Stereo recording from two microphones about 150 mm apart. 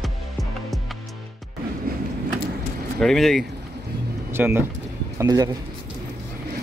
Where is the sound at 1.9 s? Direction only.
90° right.